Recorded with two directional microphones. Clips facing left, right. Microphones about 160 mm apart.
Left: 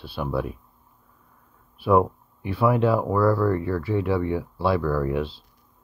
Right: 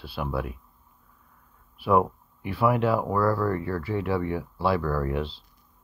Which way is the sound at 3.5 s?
15° left (ahead or behind).